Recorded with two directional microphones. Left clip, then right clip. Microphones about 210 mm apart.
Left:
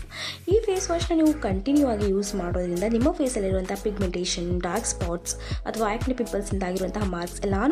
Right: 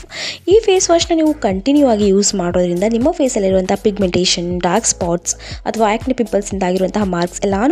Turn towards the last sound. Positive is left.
turn(degrees=-40)  # may be behind; listen again after turning